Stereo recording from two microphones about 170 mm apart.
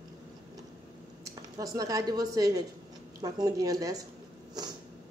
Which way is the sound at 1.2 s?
20° right (ahead or behind).